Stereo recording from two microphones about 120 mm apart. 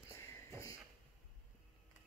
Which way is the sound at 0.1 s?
25° left (ahead or behind).